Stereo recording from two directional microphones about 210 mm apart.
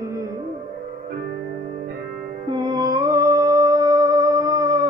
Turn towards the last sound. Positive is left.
turn(degrees=-15)  # may be behind; listen again after turning